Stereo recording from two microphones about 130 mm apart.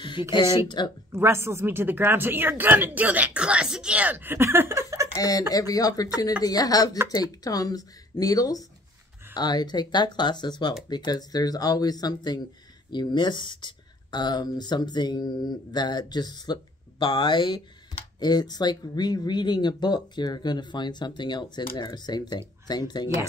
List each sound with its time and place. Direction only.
0.0 s speech: 35° left (ahead or behind)
1.1 s speech: 20° right (ahead or behind)
5.1 s speech: 25° left (ahead or behind)